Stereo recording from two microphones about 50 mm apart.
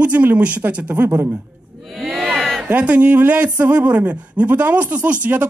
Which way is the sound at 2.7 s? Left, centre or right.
Right.